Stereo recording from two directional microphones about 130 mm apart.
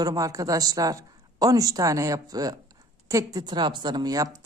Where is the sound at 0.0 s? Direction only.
25° right (ahead or behind).